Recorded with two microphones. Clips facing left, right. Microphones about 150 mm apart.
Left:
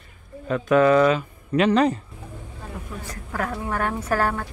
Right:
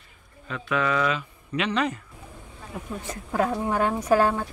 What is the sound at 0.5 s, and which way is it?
Speech, 40° left (ahead or behind).